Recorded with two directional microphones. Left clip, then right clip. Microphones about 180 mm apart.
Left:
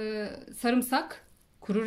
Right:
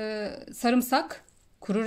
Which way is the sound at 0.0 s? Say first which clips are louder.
Right 2 dB; 35° right (ahead or behind).